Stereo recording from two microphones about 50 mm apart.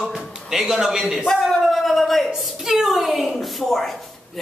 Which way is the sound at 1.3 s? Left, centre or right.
Centre.